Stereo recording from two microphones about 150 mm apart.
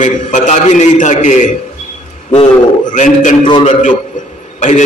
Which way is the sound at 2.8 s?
55° left (ahead or behind).